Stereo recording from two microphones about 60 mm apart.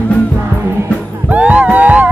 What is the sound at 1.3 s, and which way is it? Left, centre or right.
Music, right.